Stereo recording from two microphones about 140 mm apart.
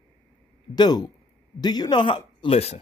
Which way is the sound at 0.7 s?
30° left (ahead or behind).